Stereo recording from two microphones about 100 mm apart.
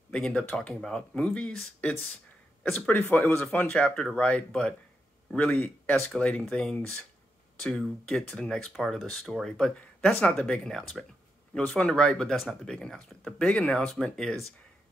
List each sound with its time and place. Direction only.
0.1 s speech: 10° left (ahead or behind)